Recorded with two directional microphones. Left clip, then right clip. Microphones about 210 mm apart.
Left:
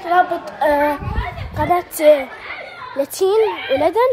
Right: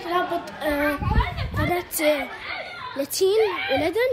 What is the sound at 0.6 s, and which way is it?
Child singing, 25° left (ahead or behind).